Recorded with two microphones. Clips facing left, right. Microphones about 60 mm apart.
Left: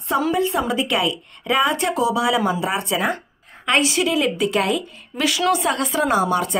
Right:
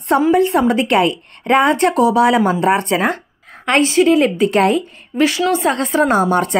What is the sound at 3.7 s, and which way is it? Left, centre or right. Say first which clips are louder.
A woman's voice: right 7 dB; right.